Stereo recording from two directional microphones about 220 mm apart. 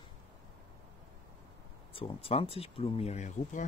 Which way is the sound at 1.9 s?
25° left (ahead or behind).